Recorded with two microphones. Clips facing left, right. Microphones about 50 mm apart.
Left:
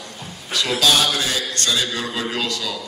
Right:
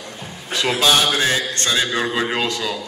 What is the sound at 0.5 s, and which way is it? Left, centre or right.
A man's voice, right.